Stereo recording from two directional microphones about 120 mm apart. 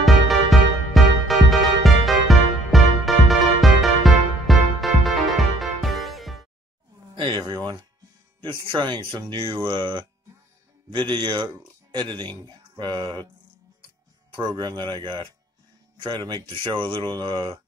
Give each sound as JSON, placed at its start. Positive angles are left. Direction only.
{"t": 0.0, "sound": "music", "side_deg": 0}
{"t": 7.2, "sound": "a sound", "side_deg": -40}
{"t": 8.4, "sound": "speech", "side_deg": -45}
{"t": 14.3, "sound": "speech", "side_deg": -35}
{"t": 16.3, "sound": "speech", "side_deg": -45}